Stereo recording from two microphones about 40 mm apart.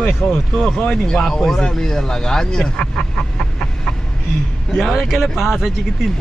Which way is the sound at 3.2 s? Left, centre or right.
Left.